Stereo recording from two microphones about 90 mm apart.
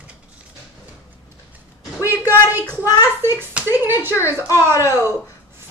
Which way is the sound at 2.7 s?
40° left (ahead or behind).